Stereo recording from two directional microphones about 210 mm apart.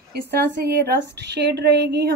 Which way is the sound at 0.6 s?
50° right (ahead or behind).